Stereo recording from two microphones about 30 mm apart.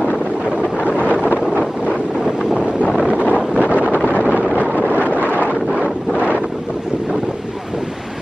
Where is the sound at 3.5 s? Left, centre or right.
Right.